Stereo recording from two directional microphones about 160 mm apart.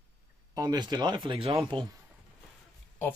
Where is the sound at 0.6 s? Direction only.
25° right (ahead or behind).